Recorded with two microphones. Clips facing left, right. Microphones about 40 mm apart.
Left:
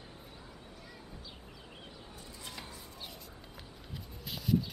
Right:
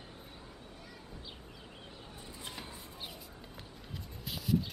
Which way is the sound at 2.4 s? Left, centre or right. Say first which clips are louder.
Right 1 dB; right.